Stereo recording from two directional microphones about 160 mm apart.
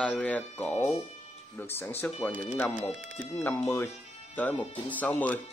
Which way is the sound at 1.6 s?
15° left (ahead or behind).